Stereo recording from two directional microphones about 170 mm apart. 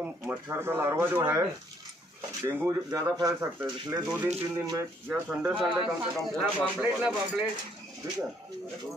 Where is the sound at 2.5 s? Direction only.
10° right (ahead or behind).